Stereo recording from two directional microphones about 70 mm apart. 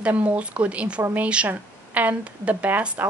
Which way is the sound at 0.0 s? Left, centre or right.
Right.